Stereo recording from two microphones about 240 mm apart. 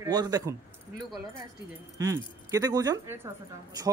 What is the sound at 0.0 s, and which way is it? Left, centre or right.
Speech, centre.